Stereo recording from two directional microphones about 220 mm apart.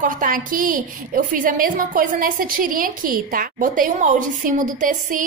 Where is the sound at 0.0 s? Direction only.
40° right (ahead or behind).